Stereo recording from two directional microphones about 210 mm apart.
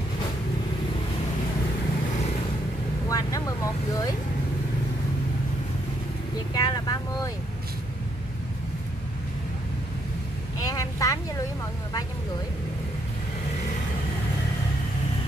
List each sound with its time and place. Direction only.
3.1 s vehicle: 15° left (ahead or behind)
6.5 s speech: 20° left (ahead or behind)
10.6 s vehicle: 15° left (ahead or behind)